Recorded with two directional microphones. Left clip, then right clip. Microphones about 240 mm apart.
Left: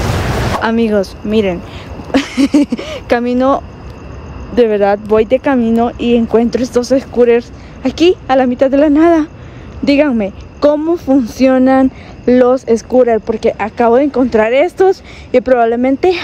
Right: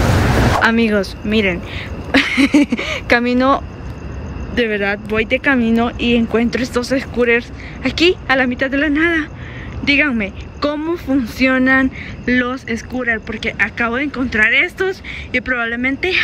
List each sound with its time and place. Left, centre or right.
0.6 s speech: centre